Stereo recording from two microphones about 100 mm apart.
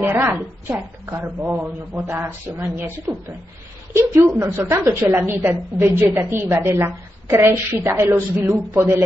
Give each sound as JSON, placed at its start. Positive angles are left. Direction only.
{"t": 0.0, "sound": "a woman's voice", "side_deg": -20}
{"t": 2.0, "sound": "a woman's voice", "side_deg": -25}
{"t": 3.9, "sound": "a woman's voice", "side_deg": -30}